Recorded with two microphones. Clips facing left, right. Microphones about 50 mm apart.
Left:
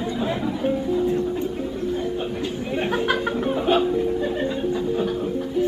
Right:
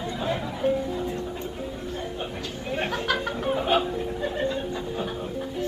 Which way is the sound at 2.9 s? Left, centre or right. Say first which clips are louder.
Left 6 dB; centre.